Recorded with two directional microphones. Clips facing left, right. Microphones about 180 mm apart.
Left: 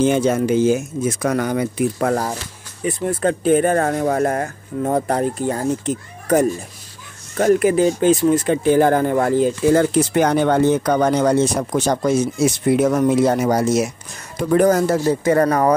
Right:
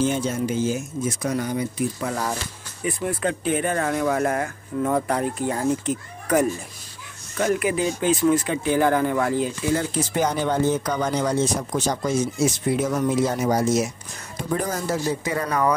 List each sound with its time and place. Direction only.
0.0 s speech: 70° left (ahead or behind)
2.8 s speech: 40° left (ahead or behind)
7.3 s speech: 40° left (ahead or behind)
9.8 s speech: 65° left (ahead or behind); by 15.7 s 50° left (ahead or behind)